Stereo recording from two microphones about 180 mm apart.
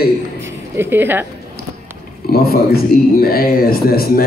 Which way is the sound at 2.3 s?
60° left (ahead or behind).